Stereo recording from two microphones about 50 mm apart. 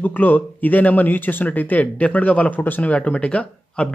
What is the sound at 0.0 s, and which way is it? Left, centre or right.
Speech, left.